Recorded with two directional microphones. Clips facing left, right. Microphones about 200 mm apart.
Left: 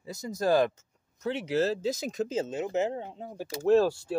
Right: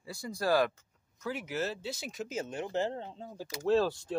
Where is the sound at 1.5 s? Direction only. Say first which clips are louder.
Left 12 dB; 40° left (ahead or behind).